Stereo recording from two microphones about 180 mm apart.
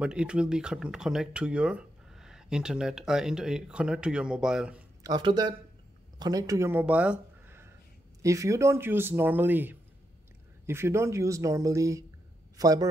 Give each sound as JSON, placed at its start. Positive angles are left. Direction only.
{"t": 0.0, "sound": "speech", "side_deg": -5}
{"t": 5.0, "sound": "speech", "side_deg": -25}